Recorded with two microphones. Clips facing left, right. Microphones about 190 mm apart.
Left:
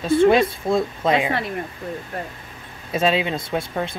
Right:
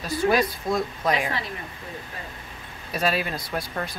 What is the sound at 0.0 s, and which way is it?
Speech, 25° left (ahead or behind).